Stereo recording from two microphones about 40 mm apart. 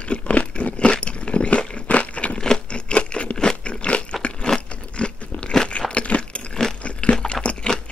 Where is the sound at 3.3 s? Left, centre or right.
Centre.